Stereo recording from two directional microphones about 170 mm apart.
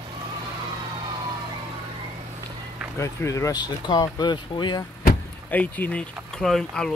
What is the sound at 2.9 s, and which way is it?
Speech, 15° left (ahead or behind).